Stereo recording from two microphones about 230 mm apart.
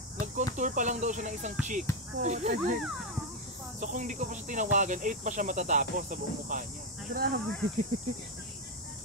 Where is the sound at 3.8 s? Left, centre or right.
Right.